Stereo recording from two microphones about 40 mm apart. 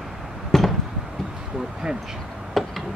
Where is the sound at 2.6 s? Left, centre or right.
Centre.